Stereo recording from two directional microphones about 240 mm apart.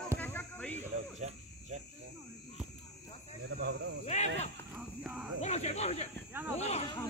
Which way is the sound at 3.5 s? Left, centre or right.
Right.